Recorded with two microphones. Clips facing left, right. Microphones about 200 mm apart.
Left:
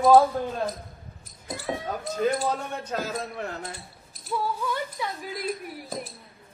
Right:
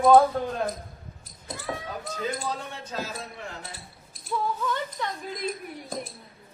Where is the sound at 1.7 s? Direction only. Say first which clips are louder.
Left 3 dB; 20° left (ahead or behind).